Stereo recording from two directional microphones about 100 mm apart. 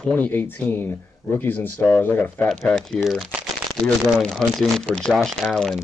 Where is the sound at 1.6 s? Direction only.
20° left (ahead or behind).